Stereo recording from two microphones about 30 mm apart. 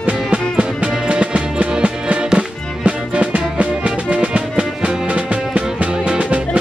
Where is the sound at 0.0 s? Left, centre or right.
Right.